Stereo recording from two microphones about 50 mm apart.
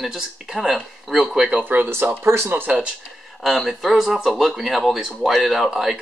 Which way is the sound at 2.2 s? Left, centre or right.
Right.